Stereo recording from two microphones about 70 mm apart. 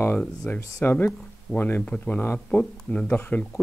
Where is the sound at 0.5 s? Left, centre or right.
Left.